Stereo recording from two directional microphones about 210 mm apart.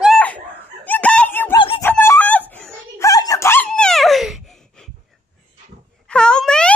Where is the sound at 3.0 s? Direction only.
15° left (ahead or behind); by 4.4 s centre (ahead or behind).